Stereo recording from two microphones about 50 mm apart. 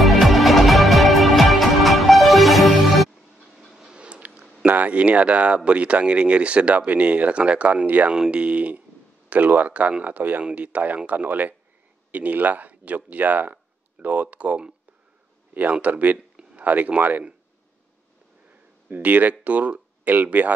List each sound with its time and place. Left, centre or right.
0.0 s music: centre
3.9 s a sound: right
4.6 s speech: right
15.7 s speech: right
18.9 s speech: right